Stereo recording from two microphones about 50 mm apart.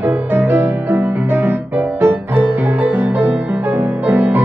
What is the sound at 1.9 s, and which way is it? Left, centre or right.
Music, right.